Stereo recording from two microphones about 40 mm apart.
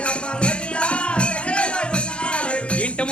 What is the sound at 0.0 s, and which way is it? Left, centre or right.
Music, left.